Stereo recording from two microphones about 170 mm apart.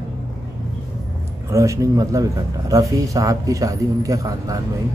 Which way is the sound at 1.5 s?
20° right (ahead or behind).